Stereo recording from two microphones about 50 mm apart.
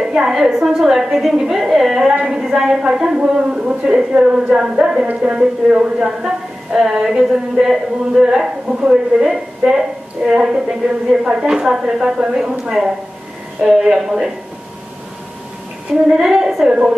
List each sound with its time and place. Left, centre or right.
0.0 s a woman's voice: centre
2.4 s a woman's voice: centre
16.2 s a woman's voice: centre
16.6 s a woman's voice: centre